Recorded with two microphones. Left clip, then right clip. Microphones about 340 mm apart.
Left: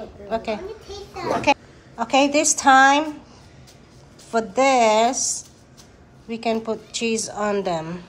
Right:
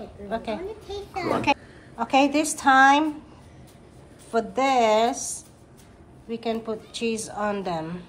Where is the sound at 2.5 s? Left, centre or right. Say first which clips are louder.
Left 2 dB; centre.